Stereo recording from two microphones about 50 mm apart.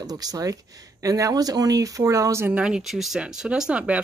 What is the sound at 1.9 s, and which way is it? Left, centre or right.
Speech, right.